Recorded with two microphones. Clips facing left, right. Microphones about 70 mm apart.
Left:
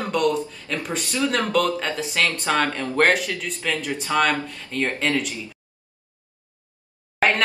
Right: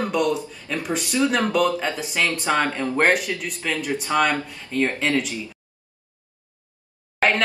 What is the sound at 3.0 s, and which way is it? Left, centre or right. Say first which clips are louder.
Speech: right 1 dB; centre.